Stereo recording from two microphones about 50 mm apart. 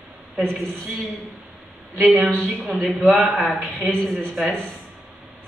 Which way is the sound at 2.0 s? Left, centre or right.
Right.